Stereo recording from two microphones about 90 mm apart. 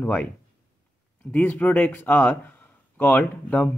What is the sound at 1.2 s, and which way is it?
Speech, 20° left (ahead or behind).